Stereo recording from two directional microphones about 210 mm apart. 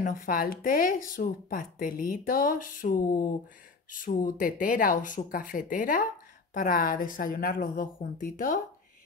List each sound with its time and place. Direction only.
0.0 s speech: 40° left (ahead or behind)